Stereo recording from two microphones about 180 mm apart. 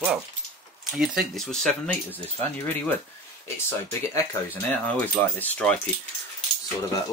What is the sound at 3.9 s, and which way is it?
Speech, 15° left (ahead or behind).